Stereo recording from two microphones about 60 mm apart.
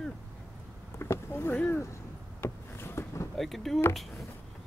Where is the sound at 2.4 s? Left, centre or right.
Left.